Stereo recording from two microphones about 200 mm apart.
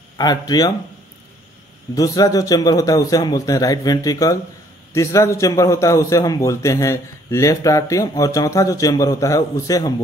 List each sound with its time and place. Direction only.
0.2 s speech: 20° left (ahead or behind)
2.0 s a man's voice: 20° left (ahead or behind)